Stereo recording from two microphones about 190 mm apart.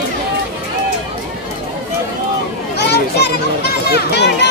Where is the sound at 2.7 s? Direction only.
60° left (ahead or behind).